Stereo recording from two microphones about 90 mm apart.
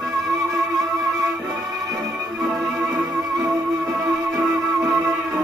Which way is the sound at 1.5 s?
40° right (ahead or behind).